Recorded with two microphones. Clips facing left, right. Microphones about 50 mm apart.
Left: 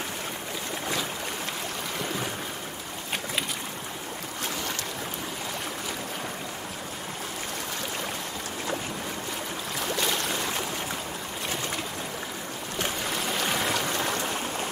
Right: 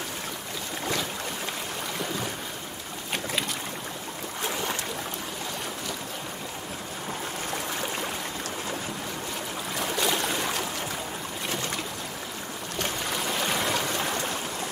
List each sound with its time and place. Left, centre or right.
9.8 s boat: centre
13.0 s stream: centre